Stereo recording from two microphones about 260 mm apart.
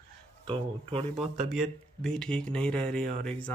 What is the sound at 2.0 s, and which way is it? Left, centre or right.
A man's voice, centre.